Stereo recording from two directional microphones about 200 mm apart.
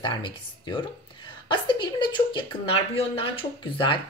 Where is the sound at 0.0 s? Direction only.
25° left (ahead or behind).